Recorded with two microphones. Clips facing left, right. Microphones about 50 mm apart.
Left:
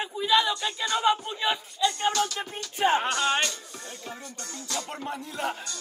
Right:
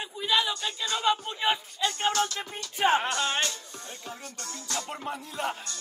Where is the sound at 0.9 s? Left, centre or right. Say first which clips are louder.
Left 2 dB; centre.